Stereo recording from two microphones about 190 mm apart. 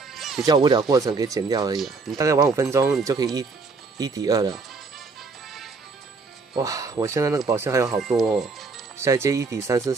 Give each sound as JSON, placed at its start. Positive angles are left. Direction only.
{"t": 0.1, "sound": "music", "side_deg": 0}
{"t": 0.5, "sound": "speech", "side_deg": -20}
{"t": 1.8, "sound": "speech", "side_deg": 0}
{"t": 2.1, "sound": "speech", "side_deg": -15}
{"t": 6.5, "sound": "speech", "side_deg": -20}
{"t": 7.9, "sound": "speech", "side_deg": 0}
{"t": 8.9, "sound": "speech", "side_deg": -15}